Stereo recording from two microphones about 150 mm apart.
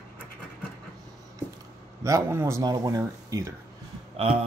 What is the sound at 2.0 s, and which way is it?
Speech, 20° right (ahead or behind).